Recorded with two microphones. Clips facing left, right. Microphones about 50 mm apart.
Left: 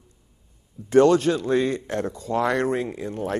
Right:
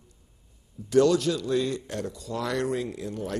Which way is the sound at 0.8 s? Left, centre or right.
Left.